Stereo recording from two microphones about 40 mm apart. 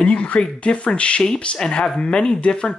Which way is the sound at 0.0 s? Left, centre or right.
Left.